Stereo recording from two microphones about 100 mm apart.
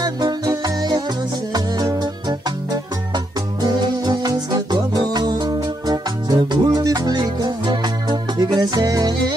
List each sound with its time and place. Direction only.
0.0 s music: 45° right (ahead or behind)